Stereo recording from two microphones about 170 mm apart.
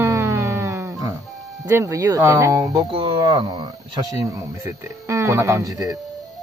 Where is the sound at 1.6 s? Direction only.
15° right (ahead or behind).